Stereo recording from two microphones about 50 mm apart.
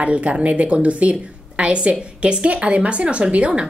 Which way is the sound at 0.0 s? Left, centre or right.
Right.